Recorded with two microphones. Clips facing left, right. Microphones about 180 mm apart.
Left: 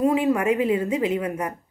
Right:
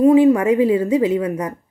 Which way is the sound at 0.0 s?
30° right (ahead or behind).